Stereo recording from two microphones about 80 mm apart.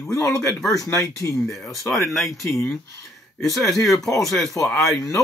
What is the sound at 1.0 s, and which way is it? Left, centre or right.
Speech, left.